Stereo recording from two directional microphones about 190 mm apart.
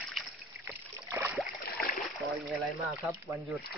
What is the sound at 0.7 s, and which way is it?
Rowboat, 10° right (ahead or behind).